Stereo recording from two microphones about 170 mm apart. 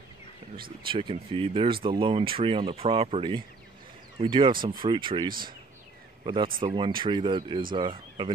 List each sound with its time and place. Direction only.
0.8 s speech: 30° right (ahead or behind)